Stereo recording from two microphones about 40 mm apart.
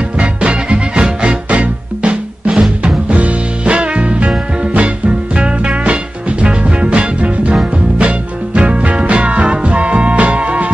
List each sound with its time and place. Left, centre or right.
0.2 s music: right